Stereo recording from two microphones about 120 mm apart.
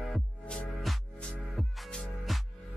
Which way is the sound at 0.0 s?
5° left (ahead or behind).